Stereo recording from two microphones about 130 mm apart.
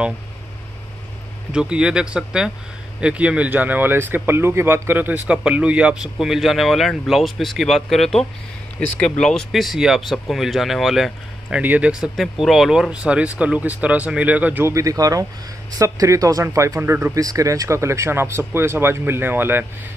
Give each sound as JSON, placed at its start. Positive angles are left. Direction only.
{"t": 1.5, "sound": "speech", "side_deg": -5}